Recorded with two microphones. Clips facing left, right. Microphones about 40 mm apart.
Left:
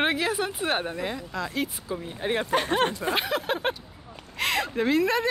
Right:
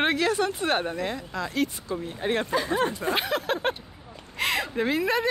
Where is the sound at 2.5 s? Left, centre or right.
Left.